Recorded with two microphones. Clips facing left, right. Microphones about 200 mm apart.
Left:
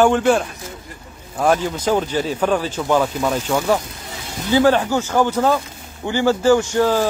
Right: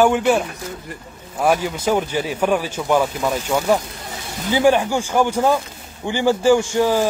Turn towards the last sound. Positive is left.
turn(degrees=-15)  # may be behind; listen again after turning